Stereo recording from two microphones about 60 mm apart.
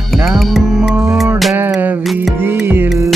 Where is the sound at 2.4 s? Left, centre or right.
Right.